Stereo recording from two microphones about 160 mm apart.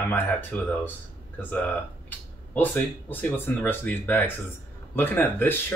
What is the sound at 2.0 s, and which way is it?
Speech, 10° left (ahead or behind).